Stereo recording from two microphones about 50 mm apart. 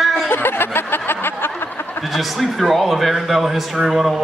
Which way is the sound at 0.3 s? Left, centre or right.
Left.